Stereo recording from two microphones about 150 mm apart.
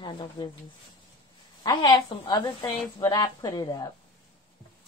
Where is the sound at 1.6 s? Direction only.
30° left (ahead or behind).